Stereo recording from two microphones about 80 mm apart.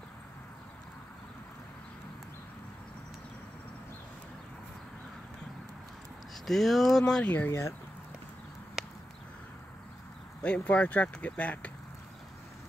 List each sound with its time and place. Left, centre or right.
6.4 s speech: centre
7.3 s speech: left
10.4 s speech: centre